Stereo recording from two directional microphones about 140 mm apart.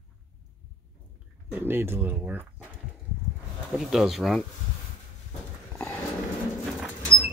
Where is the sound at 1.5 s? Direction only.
15° right (ahead or behind).